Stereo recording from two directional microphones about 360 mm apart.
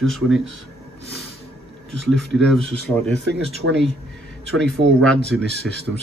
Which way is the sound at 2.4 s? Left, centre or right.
Centre.